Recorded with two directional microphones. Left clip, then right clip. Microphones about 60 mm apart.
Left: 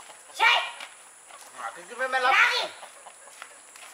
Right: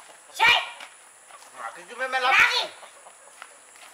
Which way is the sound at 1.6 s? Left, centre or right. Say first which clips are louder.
Even; right.